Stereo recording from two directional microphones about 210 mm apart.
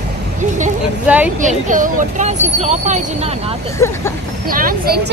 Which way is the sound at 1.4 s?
35° right (ahead or behind).